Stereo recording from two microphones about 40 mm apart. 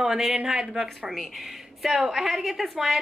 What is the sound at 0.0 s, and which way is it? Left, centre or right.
Speech, centre.